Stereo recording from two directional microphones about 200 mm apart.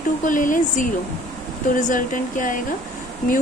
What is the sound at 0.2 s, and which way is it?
Speech, 40° left (ahead or behind).